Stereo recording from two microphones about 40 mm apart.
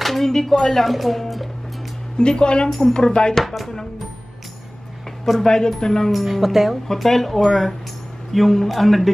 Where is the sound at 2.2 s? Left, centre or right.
Left.